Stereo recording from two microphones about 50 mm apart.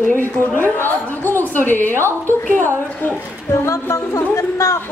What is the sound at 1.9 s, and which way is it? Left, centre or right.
Speech, right.